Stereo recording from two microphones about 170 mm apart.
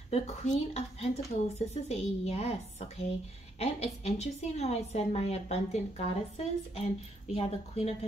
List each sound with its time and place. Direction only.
0.1 s a woman's voice: 40° left (ahead or behind)
3.5 s a woman's voice: 35° left (ahead or behind)